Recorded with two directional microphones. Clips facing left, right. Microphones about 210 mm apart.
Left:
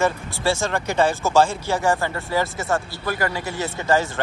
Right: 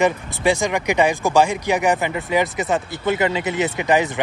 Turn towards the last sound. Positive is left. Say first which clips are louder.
# right 3 dB
turn(degrees=-20)  # may be behind; listen again after turning